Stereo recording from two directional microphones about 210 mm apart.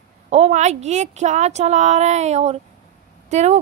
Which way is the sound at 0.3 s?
35° right (ahead or behind).